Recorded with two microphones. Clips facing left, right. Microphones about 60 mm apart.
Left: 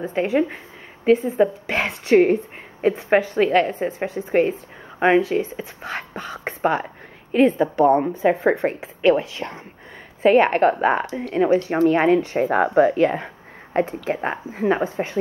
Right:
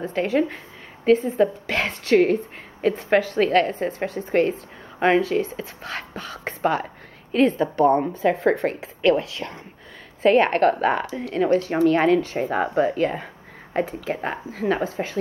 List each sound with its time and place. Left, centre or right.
0.0 s a woman's voice: centre
12.4 s a woman's voice: left